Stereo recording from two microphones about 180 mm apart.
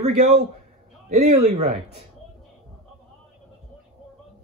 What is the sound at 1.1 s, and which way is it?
Speech, 60° right (ahead or behind).